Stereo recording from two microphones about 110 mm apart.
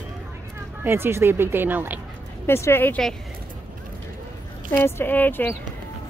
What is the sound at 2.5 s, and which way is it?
Speech, 20° left (ahead or behind).